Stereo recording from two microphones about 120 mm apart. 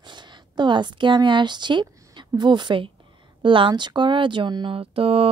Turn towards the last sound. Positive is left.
turn(degrees=-50)  # may be behind; listen again after turning